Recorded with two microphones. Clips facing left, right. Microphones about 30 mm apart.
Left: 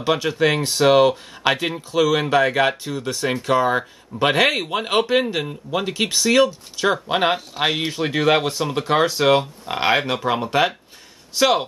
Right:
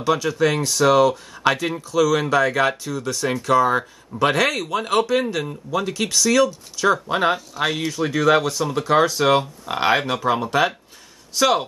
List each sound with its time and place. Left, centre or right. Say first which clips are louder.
0.0 s speech: even; left